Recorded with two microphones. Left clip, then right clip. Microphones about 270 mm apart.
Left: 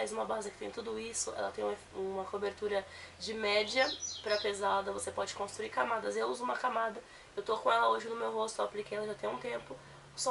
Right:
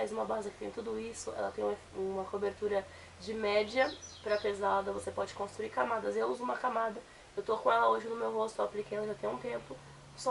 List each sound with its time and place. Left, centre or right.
0.1 s speech: centre
1.2 s speech: centre
2.4 s speech: centre